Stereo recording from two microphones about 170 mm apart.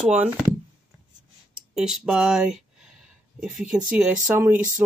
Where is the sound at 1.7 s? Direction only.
5° right (ahead or behind).